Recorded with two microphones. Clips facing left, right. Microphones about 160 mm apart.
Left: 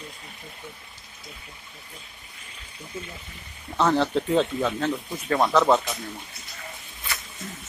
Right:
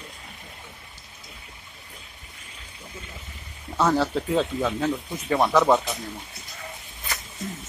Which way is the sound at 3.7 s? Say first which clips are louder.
Even; 5° right (ahead or behind).